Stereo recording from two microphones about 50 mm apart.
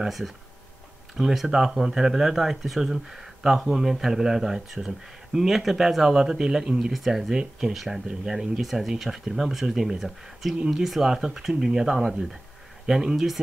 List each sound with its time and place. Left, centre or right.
1.1 s speech: centre